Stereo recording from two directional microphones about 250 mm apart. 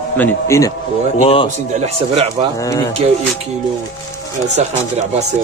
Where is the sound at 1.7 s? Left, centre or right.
Right.